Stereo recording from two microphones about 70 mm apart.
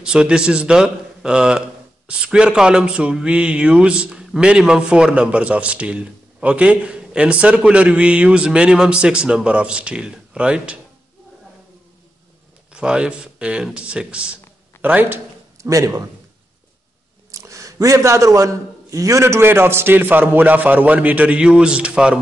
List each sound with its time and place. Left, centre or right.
0.0 s a man's voice: centre
12.7 s a man's voice: centre
14.8 s speech: right
15.5 s a man's voice: right
17.3 s a man's voice: right; by 22.2 s centre